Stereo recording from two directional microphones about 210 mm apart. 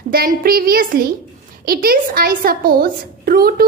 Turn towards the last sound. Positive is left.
turn(degrees=-45)  # may be behind; listen again after turning